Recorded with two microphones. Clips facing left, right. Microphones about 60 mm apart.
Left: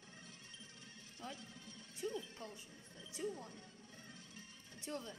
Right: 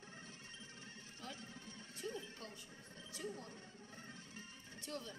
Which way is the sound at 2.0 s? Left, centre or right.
Right.